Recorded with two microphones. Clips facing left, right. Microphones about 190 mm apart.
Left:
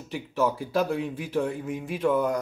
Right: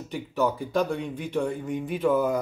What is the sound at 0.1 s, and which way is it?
Speech, centre (ahead or behind).